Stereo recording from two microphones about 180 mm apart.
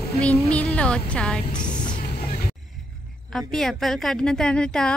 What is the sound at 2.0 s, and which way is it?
Vehicle, 60° left (ahead or behind).